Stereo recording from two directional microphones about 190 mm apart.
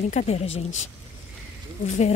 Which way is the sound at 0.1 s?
35° left (ahead or behind).